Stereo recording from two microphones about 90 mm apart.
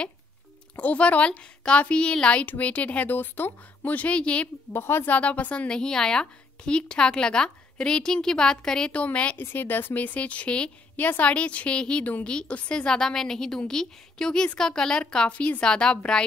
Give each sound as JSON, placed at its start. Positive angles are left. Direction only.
{"t": 0.7, "sound": "a woman's voice", "side_deg": 15}
{"t": 4.7, "sound": "a woman's voice", "side_deg": 25}